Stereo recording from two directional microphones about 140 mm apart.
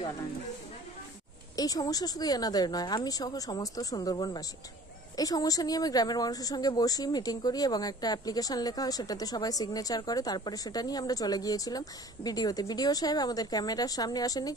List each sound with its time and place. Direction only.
1.6 s speech: 25° left (ahead or behind)